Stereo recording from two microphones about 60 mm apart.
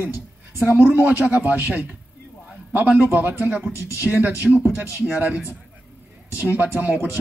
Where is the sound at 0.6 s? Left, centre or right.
Right.